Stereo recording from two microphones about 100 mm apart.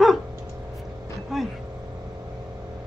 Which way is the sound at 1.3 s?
Centre (ahead or behind).